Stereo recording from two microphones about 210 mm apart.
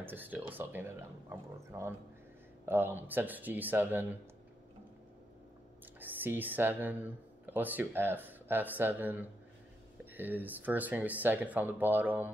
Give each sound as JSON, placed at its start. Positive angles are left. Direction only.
{"t": 0.0, "sound": "speech", "side_deg": -10}
{"t": 5.9, "sound": "speech", "side_deg": -10}